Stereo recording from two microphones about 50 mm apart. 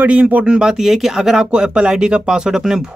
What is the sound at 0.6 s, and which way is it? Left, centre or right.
Speech, centre.